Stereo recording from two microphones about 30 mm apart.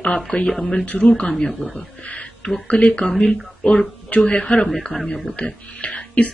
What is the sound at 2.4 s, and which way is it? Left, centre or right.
Speech, left.